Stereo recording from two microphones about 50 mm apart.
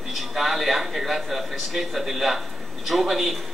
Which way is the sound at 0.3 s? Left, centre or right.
Centre.